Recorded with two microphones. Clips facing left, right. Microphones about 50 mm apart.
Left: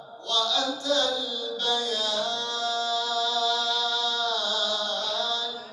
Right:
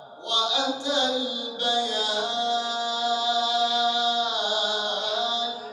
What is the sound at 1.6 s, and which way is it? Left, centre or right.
Mantra, centre.